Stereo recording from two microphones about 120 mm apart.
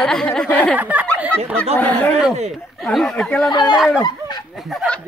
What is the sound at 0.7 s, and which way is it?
Speech, 15° right (ahead or behind).